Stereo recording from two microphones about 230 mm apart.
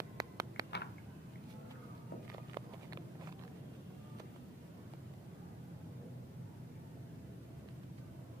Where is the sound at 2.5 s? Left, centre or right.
Centre.